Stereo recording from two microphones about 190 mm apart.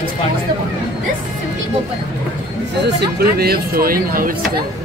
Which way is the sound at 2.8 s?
55° right (ahead or behind).